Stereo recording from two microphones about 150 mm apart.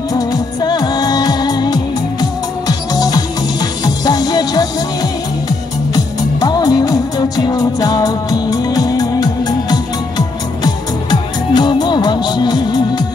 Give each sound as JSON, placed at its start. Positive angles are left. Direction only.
{"t": 0.1, "sound": "music", "side_deg": 25}
{"t": 5.9, "sound": "music", "side_deg": 25}